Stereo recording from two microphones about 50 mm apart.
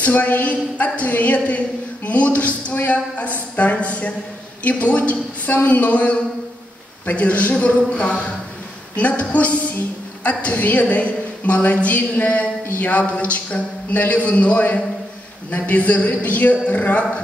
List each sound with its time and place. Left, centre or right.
0.0 s a woman's voice: left